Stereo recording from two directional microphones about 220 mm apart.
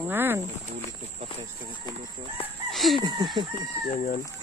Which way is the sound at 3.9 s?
35° left (ahead or behind).